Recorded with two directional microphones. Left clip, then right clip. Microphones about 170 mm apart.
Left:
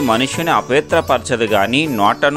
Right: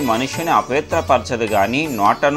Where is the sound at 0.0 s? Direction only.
45° left (ahead or behind).